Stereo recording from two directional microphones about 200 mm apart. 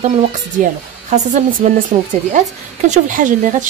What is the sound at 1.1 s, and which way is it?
A woman's voice, 40° right (ahead or behind).